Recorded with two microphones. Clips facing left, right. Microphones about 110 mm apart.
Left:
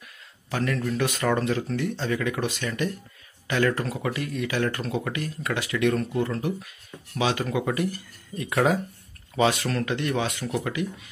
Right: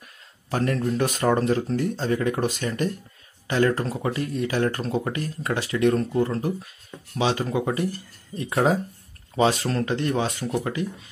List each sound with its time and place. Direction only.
0.5 s speech: 40° right (ahead or behind)